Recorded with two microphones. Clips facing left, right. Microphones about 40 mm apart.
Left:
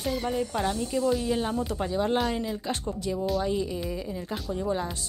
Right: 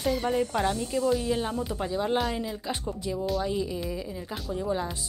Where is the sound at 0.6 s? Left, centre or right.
Right.